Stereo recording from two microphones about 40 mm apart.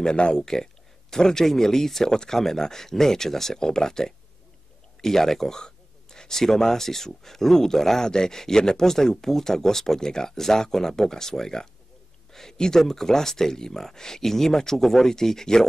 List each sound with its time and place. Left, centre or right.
0.0 s speech: left